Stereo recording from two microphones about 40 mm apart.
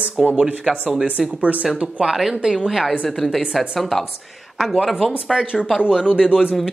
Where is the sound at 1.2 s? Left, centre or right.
Right.